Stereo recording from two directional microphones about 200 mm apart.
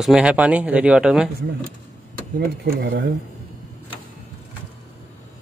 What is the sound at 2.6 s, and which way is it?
Speech, 50° right (ahead or behind).